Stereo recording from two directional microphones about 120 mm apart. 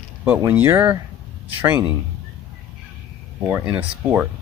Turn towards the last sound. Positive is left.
turn(degrees=-10)  # may be behind; listen again after turning